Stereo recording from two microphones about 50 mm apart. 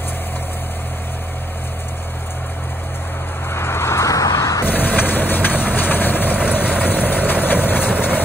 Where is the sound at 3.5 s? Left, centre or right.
Left.